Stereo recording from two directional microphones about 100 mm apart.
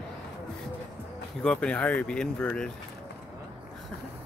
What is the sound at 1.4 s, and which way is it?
Speech, 10° left (ahead or behind).